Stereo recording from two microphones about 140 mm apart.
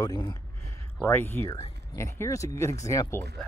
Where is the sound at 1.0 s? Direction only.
15° left (ahead or behind).